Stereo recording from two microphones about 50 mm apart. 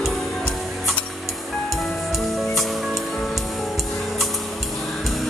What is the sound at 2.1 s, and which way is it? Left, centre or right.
Music, centre.